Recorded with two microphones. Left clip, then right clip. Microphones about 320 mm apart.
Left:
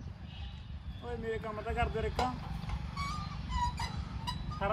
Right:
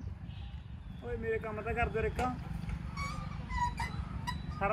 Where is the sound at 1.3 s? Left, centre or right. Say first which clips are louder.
Right 2 dB; centre.